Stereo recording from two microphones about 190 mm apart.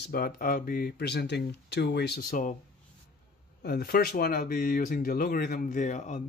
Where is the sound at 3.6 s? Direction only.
55° left (ahead or behind).